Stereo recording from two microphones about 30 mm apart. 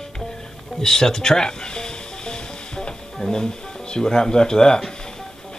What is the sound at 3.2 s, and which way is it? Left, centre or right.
Speech, left.